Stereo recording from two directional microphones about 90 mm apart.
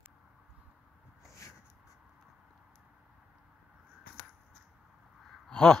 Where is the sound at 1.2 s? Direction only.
35° left (ahead or behind).